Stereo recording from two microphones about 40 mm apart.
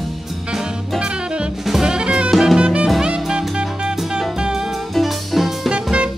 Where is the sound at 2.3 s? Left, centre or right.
Centre.